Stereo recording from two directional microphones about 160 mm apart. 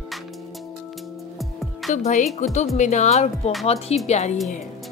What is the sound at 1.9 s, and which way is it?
Speech, 50° left (ahead or behind).